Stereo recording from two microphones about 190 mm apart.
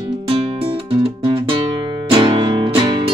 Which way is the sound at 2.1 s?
25° right (ahead or behind).